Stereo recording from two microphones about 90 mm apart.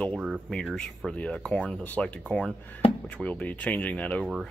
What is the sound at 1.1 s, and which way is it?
Speech, 10° left (ahead or behind).